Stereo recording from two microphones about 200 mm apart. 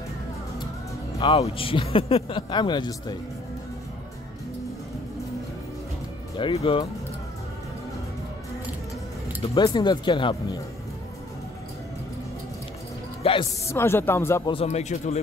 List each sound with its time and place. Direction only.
1.2 s a man's voice: 25° left (ahead or behind)
6.3 s a man's voice: 30° left (ahead or behind)
9.4 s a man's voice: 25° left (ahead or behind)
13.2 s a man's voice: 25° left (ahead or behind)
13.7 s speech: 10° left (ahead or behind)
14.5 s speech: 30° left (ahead or behind)